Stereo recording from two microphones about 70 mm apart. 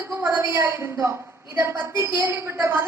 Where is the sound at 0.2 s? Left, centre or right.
Right.